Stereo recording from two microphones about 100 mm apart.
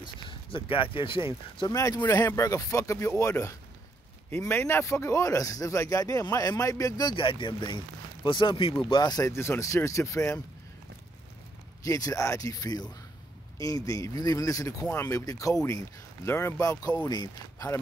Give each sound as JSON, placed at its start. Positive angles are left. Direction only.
{"t": 0.0, "sound": "speech", "side_deg": 55}
{"t": 1.7, "sound": "speech", "side_deg": 35}
{"t": 8.9, "sound": "speech", "side_deg": 40}
{"t": 11.8, "sound": "speech", "side_deg": 35}